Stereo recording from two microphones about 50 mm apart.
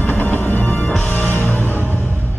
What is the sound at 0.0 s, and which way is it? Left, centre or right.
Music, left.